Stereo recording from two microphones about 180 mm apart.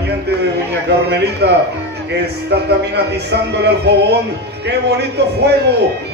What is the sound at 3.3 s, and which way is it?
A man's voice, 70° right (ahead or behind).